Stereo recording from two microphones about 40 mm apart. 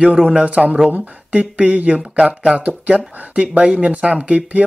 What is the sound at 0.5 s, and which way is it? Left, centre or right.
A man's voice, right.